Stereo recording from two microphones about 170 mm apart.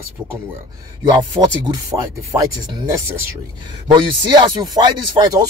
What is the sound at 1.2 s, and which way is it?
Speech, 20° right (ahead or behind).